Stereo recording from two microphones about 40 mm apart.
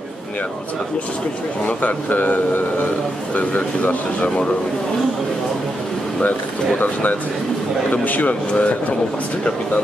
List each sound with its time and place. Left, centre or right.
1.7 s speech: left
6.8 s speech: left